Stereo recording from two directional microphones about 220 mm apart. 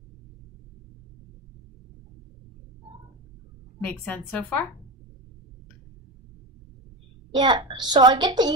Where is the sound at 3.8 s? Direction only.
5° left (ahead or behind).